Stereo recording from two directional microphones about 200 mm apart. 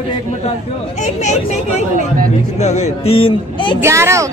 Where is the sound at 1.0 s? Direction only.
35° left (ahead or behind).